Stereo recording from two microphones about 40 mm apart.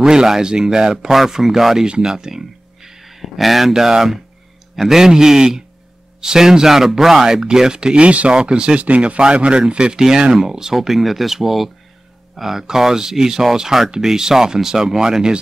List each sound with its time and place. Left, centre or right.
0.0 s speech: centre
1.9 s speech: centre